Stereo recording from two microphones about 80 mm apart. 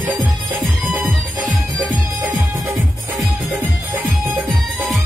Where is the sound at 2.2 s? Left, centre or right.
Right.